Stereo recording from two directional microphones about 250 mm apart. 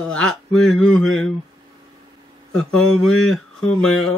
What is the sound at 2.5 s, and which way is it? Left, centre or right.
Speech, centre.